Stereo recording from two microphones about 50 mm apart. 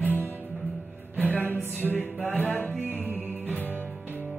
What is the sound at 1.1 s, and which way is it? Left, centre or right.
Music, left.